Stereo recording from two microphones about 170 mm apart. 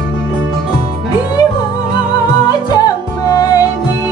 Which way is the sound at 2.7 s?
20° left (ahead or behind).